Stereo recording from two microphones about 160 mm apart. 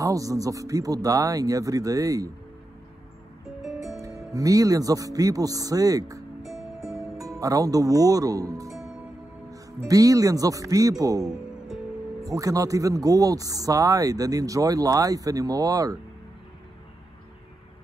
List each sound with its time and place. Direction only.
0.0 s speech: 20° right (ahead or behind)
3.6 s music: centre (ahead or behind)
4.0 s speech: 20° right (ahead or behind)
6.4 s music: centre (ahead or behind)
7.3 s speech: 20° right (ahead or behind)
9.8 s speech: 20° right (ahead or behind)
11.2 s music: 5° right (ahead or behind)
12.2 s speech: 20° right (ahead or behind)